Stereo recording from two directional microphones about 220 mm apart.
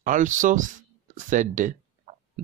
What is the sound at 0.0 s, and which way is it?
Speech, 35° right (ahead or behind).